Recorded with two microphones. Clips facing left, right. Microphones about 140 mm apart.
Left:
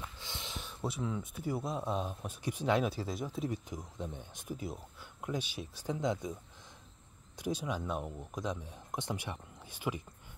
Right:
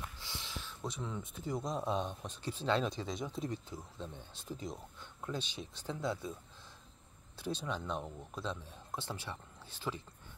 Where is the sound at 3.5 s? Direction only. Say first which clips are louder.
Left 3 dB; 15° left (ahead or behind).